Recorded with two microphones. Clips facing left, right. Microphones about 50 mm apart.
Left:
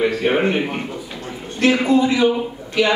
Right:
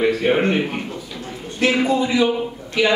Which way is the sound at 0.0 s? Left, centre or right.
Centre.